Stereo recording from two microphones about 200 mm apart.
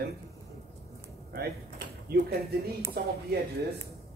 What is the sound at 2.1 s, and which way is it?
Speech, 50° right (ahead or behind).